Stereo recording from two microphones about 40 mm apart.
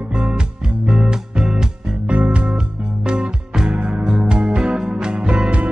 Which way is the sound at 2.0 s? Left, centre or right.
Right.